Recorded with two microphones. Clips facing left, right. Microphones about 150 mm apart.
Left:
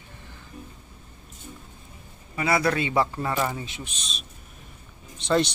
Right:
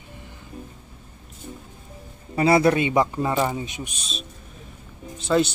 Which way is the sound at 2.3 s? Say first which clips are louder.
Right 6 dB; 30° right (ahead or behind).